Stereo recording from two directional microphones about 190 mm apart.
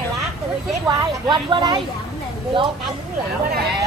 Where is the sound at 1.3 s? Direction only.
25° right (ahead or behind).